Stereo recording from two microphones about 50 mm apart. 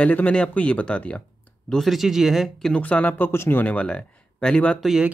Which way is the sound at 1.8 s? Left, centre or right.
Centre.